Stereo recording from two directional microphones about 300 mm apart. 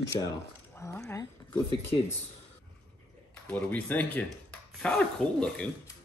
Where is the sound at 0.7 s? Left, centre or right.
Centre.